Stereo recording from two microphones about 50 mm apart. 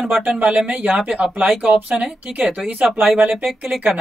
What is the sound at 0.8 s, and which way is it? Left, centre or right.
Speech, right.